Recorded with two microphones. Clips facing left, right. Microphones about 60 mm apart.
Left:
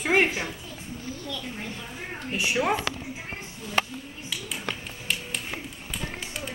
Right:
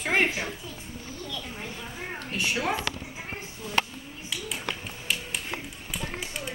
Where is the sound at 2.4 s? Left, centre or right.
Centre.